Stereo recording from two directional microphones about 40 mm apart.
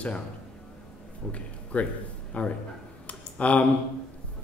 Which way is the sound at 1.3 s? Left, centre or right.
Left.